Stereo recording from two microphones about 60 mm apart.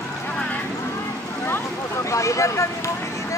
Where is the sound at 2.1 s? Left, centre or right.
Left.